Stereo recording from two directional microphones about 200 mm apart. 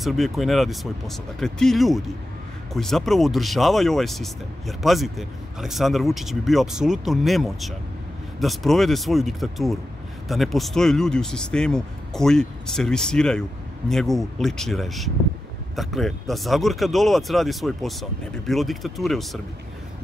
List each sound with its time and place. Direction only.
0.0 s speech: centre (ahead or behind)